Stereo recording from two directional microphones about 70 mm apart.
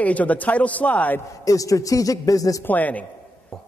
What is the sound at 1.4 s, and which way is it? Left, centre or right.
A man's voice, left.